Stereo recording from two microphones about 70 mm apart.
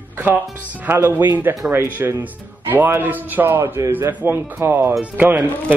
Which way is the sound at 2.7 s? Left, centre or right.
Right.